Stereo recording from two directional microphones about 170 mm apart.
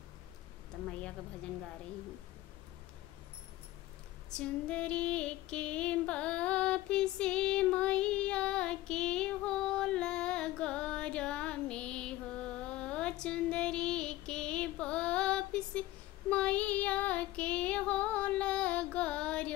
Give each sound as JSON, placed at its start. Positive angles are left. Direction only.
{"t": 0.8, "sound": "a woman's voice", "side_deg": 5}
{"t": 4.4, "sound": "female singing", "side_deg": 5}